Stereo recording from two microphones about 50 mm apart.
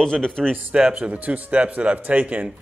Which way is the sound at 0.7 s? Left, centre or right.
Centre.